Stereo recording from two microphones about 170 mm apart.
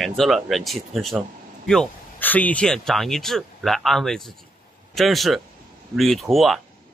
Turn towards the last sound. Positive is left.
turn(degrees=0)  # may be behind; listen again after turning